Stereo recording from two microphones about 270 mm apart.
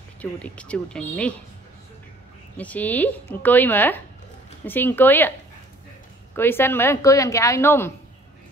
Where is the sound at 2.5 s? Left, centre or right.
Centre.